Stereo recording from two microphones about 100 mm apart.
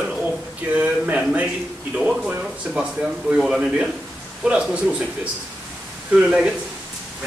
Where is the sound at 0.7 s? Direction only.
15° right (ahead or behind).